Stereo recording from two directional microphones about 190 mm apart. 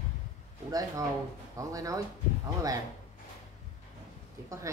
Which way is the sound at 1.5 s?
15° right (ahead or behind).